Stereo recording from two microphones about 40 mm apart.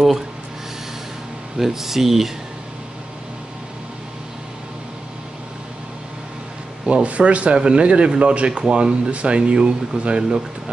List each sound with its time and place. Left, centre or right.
1.6 s speech: centre
6.9 s speech: right